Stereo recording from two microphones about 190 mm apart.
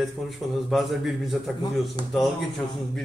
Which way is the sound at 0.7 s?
Centre (ahead or behind).